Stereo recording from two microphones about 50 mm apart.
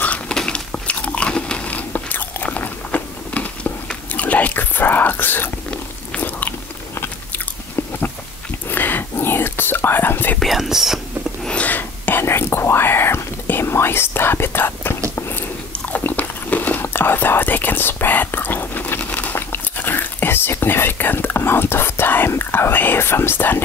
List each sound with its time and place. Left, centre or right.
0.3 s a sound: centre
0.7 s biting: left
1.7 s biting: left
8.6 s whispering: left
10.4 s whispering: centre
11.6 s whispering: left
15.3 s biting: left
16.1 s a sound: left
16.8 s whispering: left